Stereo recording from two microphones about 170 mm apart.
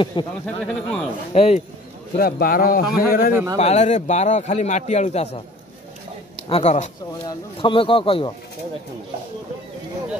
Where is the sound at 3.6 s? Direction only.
40° left (ahead or behind).